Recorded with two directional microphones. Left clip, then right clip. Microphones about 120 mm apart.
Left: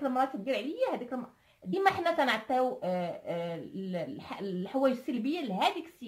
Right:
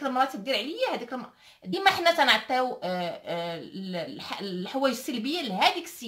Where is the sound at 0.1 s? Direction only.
35° left (ahead or behind).